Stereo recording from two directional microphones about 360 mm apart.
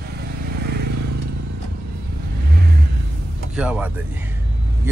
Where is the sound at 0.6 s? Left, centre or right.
Right.